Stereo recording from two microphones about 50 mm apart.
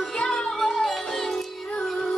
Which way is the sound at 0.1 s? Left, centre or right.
Centre.